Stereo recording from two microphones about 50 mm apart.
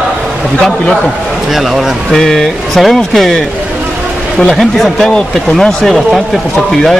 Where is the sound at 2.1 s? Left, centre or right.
Centre.